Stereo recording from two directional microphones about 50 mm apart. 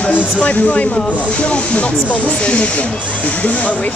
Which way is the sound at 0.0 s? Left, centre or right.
Left.